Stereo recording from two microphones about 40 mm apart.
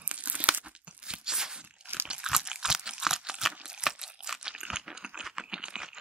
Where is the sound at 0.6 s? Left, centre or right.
Right.